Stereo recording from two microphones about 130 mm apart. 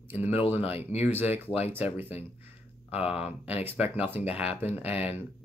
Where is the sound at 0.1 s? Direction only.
15° right (ahead or behind).